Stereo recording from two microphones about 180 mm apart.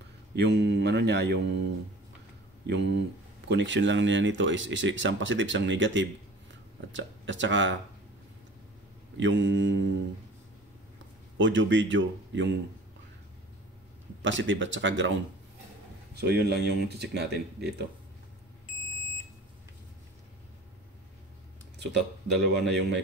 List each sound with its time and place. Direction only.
0.4 s mantra: 70° right (ahead or behind)
2.6 s mantra: 70° right (ahead or behind)
3.4 s speech: 85° right
9.1 s speech: 90° right
11.3 s speech: 90° right
14.2 s speech: 90° right
16.2 s speech: 65° right (ahead or behind)
22.3 s mantra: 70° right (ahead or behind)